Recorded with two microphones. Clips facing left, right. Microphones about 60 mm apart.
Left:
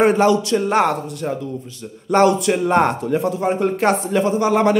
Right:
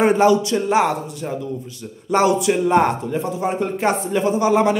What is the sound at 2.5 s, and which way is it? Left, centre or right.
Speech, centre.